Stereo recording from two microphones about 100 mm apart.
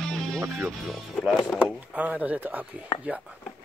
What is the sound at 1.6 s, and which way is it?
Speech, 15° right (ahead or behind).